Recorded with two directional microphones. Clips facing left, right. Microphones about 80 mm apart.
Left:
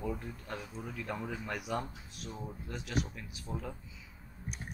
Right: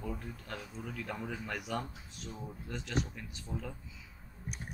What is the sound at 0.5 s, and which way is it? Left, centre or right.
Speech, centre.